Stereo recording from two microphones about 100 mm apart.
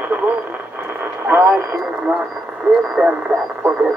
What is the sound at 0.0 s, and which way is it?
Radio, 15° right (ahead or behind).